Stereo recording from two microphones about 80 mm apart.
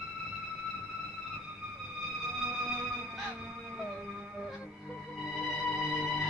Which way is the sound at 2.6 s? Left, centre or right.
Centre.